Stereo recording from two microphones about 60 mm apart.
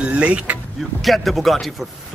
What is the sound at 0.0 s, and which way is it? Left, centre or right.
Speech, right.